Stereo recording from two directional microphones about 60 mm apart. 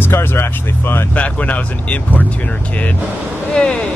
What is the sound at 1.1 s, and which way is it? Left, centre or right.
Speech, left.